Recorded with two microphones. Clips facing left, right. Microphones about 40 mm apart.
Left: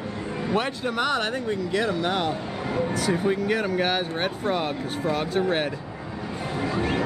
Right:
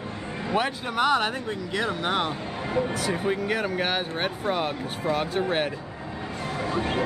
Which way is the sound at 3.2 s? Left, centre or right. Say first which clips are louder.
Left 2 dB; centre.